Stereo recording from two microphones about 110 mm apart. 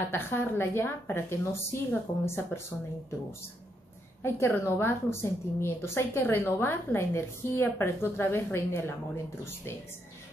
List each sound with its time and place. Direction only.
0.1 s a woman's voice: 20° left (ahead or behind)
4.2 s a woman's voice: 25° left (ahead or behind)